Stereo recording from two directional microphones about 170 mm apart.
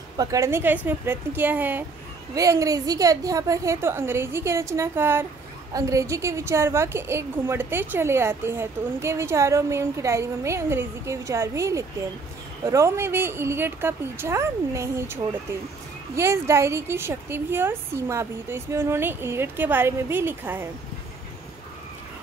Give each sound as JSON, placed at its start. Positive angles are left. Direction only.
{"t": 0.2, "sound": "a woman's voice", "side_deg": -20}
{"t": 16.2, "sound": "a woman's voice", "side_deg": -15}